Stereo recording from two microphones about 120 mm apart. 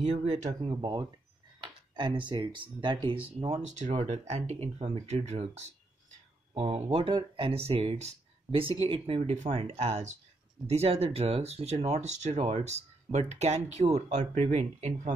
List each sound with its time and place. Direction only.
0.0 s speech: 65° right (ahead or behind)
0.7 s speech: 35° right (ahead or behind)
3.3 s speech: 55° right (ahead or behind)
6.5 s speech: 55° right (ahead or behind)
9.2 s speech: 75° right (ahead or behind)